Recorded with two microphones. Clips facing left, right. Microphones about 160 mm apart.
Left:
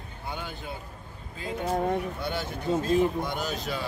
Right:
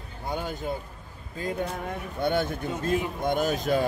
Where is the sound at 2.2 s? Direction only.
55° right (ahead or behind).